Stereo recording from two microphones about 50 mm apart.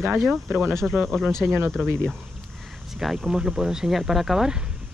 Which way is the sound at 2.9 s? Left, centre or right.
Centre.